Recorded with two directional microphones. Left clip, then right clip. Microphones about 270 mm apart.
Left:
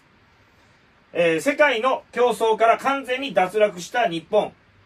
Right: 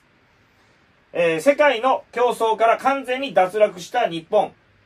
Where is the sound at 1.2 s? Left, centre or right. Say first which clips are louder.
Right 2 dB; centre.